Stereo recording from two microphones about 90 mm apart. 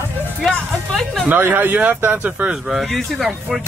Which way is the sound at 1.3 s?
25° right (ahead or behind).